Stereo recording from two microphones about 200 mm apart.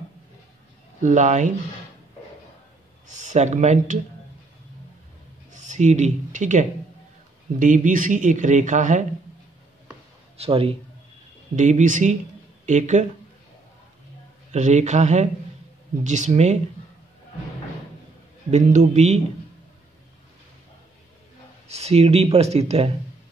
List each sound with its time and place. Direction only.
1.0 s speech: 35° right (ahead or behind)
3.1 s speech: 35° right (ahead or behind)
5.5 s speech: 35° right (ahead or behind)
10.3 s a man's voice: 30° right (ahead or behind)
14.5 s speech: 35° right (ahead or behind)
18.5 s speech: 35° right (ahead or behind)
21.6 s speech: 30° right (ahead or behind)